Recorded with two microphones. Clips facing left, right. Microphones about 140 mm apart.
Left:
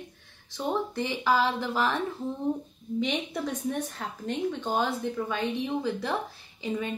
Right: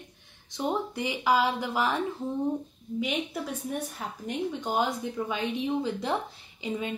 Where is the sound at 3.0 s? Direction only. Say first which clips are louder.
Left 1 dB; 5° right (ahead or behind).